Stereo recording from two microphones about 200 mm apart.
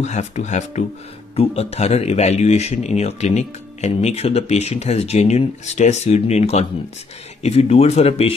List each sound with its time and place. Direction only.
0.0 s speech: 35° left (ahead or behind)